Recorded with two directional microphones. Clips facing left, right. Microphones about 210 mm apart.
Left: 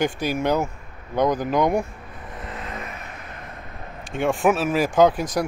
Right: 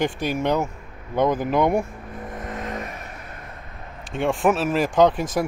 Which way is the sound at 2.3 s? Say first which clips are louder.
Right 3 dB; 45° right (ahead or behind).